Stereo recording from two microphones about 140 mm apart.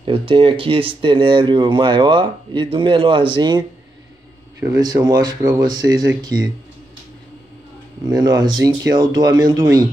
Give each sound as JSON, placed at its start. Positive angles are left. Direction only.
{"t": 0.0, "sound": "speech", "side_deg": -40}
{"t": 8.1, "sound": "speech", "side_deg": -30}